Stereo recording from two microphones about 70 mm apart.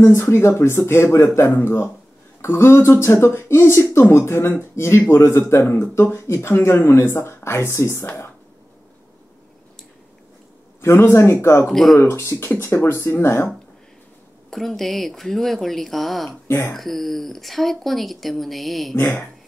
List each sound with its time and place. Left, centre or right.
0.0 s speech: left
10.8 s speech: left
11.7 s speech: centre
12.0 s speech: left
14.5 s speech: centre
16.3 s speech: left
16.7 s speech: centre